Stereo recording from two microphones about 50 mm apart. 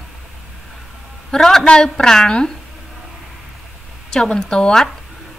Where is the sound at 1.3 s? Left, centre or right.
Centre.